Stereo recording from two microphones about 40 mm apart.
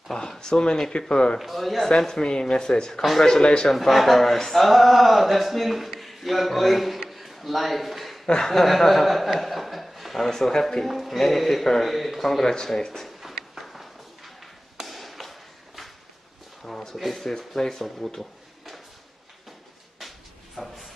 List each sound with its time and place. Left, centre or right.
0.1 s speech: centre
1.4 s speech: centre
2.0 s speech: centre
3.0 s speech: centre
3.3 s speech: centre
3.7 s a man's voice: centre
13.2 s a sound: centre
14.8 s chop: centre
16.6 s a sound: centre
16.9 s speech: centre
17.2 s speech: centre
20.5 s a sound: centre